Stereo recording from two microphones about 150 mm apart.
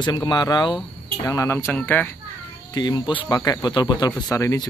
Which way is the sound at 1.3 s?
20° left (ahead or behind).